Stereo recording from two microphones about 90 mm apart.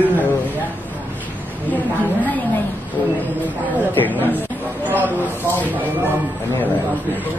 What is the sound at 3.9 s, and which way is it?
Speech, 20° left (ahead or behind).